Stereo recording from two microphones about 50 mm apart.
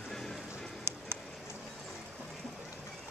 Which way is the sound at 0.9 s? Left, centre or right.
Right.